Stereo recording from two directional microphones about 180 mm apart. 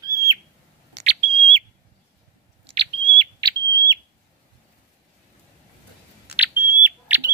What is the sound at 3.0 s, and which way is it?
Smoke detector, 30° right (ahead or behind).